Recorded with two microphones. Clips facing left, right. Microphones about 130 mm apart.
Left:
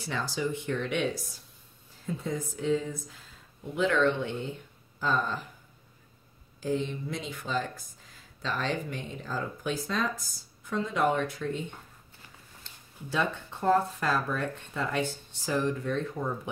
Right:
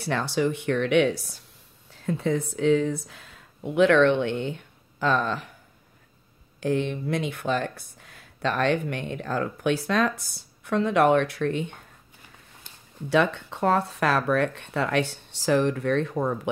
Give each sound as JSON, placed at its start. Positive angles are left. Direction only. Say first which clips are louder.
{"t": 0.0, "sound": "speech", "louder": "right 7 dB", "side_deg": -65}
{"t": 6.6, "sound": "speech", "louder": "right 5 dB", "side_deg": -70}
{"t": 13.1, "sound": "speech", "louder": "right 8 dB", "side_deg": -80}